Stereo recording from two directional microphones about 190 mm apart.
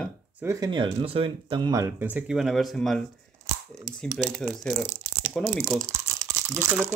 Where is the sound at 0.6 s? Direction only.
25° right (ahead or behind); by 5.5 s 5° left (ahead or behind).